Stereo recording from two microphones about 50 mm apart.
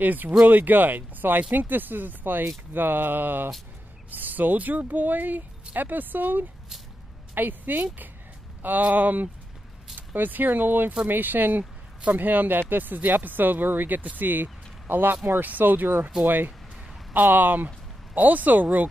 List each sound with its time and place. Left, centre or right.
0.0 s speech: right
17.1 s speech: right